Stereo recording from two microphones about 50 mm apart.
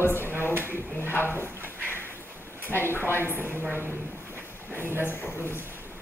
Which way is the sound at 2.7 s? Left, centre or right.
Left.